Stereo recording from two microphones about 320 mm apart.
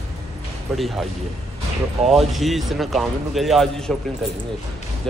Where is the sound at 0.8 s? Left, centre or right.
Centre.